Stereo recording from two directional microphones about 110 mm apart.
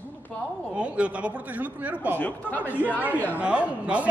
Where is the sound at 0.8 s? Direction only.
10° right (ahead or behind).